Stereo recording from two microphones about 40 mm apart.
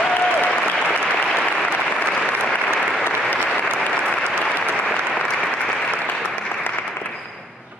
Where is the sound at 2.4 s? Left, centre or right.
Left.